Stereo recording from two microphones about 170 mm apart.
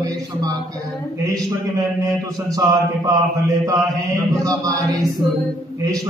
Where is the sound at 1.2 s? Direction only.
20° right (ahead or behind).